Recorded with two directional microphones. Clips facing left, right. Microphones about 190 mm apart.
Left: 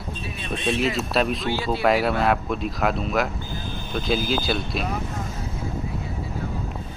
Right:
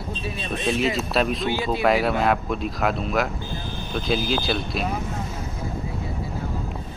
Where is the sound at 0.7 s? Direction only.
Centre (ahead or behind).